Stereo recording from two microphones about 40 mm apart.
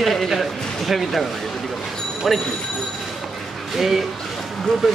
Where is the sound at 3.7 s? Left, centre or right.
Centre.